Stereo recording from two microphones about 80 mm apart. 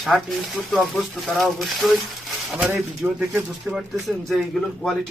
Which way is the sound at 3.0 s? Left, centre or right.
Centre.